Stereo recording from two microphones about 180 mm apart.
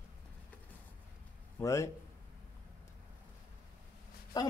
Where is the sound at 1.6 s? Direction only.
15° left (ahead or behind).